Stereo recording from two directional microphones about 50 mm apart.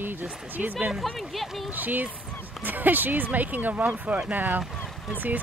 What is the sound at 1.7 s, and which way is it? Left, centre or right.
Speech, right.